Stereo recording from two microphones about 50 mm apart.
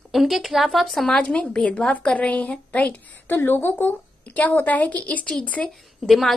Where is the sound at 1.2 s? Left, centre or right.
Left.